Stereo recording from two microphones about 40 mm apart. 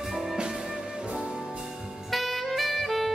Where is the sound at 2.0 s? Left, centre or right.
Centre.